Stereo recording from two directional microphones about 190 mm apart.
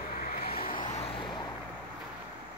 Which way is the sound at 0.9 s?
30° left (ahead or behind).